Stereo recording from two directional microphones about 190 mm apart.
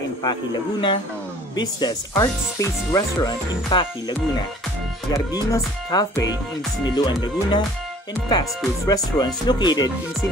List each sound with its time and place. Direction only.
0.2 s speech: 25° left (ahead or behind)